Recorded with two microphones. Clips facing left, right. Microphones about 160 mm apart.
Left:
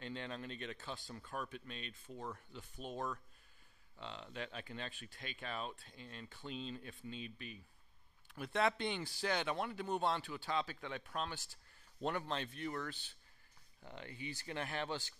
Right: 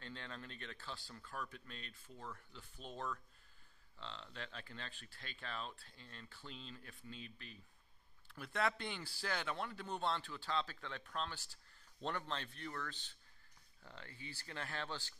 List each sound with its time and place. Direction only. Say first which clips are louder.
0.0 s speech: left 6 dB; 20° left (ahead or behind)